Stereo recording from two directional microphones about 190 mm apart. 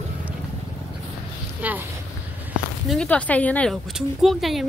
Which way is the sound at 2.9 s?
5° left (ahead or behind).